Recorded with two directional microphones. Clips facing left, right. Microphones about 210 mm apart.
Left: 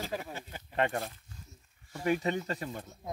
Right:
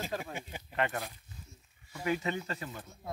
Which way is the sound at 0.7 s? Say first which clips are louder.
Left 3 dB; 35° left (ahead or behind).